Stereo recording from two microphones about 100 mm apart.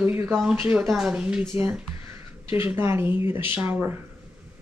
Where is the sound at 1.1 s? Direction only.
10° right (ahead or behind).